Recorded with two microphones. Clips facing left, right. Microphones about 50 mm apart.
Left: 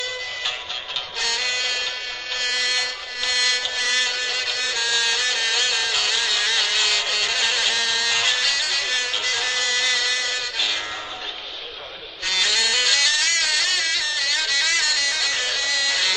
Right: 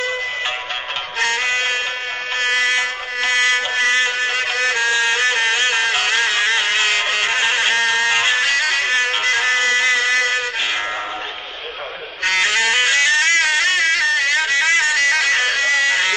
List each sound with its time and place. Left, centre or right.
1.2 s music: right
2.4 s mosquito: right
12.3 s music: right